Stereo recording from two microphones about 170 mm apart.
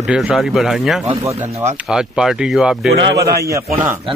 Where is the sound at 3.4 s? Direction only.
20° right (ahead or behind).